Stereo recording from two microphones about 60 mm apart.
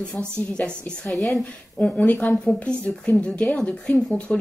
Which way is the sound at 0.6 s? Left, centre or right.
Centre.